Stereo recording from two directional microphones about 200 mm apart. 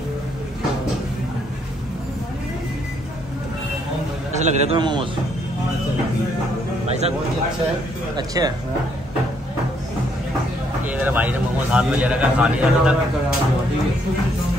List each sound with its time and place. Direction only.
4.3 s a man's voice: 35° right (ahead or behind)
4.7 s speech: 25° right (ahead or behind)
6.9 s speech: 35° right (ahead or behind)
8.2 s speech: 20° right (ahead or behind)
10.9 s a man's voice: 5° right (ahead or behind)